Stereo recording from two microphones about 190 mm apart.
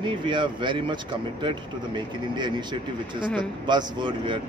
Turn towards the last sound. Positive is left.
turn(degrees=-25)  # may be behind; listen again after turning